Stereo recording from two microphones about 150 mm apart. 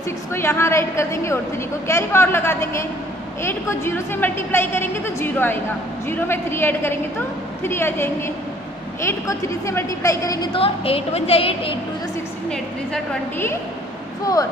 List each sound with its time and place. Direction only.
0.3 s a woman's voice: 15° left (ahead or behind)
10.5 s a woman's voice: 40° left (ahead or behind)
12.4 s a woman's voice: 5° left (ahead or behind)